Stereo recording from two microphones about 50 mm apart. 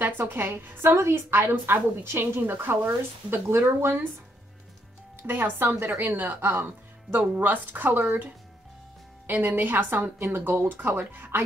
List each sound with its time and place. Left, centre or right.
0.3 s a woman's voice: right
0.8 s a woman's voice: right
5.2 s a woman's voice: right
9.3 s a woman's voice: right